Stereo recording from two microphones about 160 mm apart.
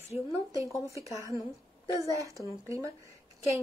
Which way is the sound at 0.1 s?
20° right (ahead or behind).